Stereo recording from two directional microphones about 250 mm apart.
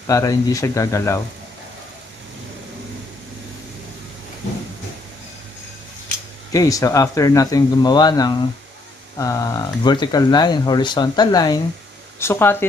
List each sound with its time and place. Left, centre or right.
0.0 s speech: centre
6.5 s speech: centre